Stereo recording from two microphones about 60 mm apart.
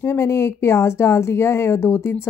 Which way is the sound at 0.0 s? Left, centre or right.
Left.